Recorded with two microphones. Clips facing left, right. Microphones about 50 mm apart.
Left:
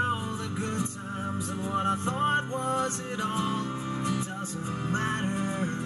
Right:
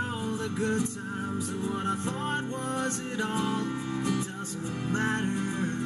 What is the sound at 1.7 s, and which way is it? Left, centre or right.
Music, left.